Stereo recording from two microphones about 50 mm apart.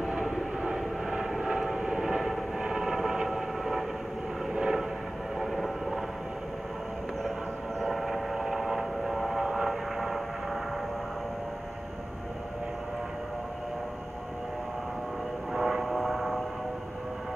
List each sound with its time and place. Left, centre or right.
0.1 s vehicle: centre
5.4 s vehicle: centre
7.8 s vehicle: centre
9.9 s vehicle: centre
15.5 s vehicle: centre